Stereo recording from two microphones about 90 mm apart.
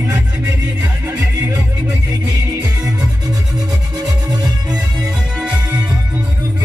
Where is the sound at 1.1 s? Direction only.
25° right (ahead or behind).